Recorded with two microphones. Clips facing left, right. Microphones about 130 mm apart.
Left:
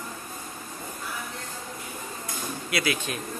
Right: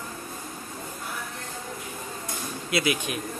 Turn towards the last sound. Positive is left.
turn(degrees=-20)  # may be behind; listen again after turning